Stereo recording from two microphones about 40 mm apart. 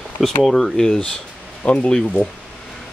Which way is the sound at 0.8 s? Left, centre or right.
Centre.